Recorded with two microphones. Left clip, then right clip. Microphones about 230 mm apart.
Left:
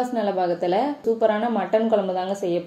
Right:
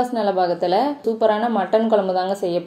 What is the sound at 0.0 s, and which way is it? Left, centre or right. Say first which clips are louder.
A woman's voice: right 4 dB; right.